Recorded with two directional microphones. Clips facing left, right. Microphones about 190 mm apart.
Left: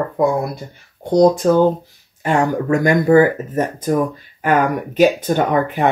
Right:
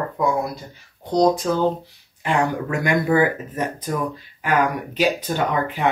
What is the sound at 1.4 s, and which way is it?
Speech, 50° left (ahead or behind).